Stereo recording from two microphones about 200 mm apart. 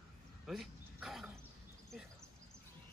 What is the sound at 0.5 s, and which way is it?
Dog, centre (ahead or behind).